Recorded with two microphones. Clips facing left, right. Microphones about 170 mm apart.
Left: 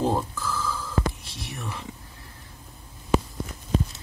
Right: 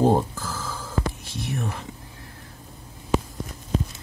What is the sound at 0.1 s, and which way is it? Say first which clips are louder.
Telephone bell ringing: right 4 dB; 40° right (ahead or behind).